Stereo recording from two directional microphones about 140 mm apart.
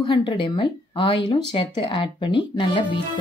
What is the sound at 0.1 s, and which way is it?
Speech, 35° left (ahead or behind).